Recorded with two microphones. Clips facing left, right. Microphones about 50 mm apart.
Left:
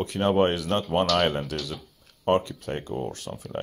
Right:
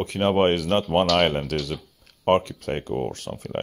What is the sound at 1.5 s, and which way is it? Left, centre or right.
Speech, right.